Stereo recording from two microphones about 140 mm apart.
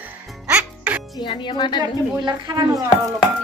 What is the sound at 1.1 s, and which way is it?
Speech, 35° left (ahead or behind).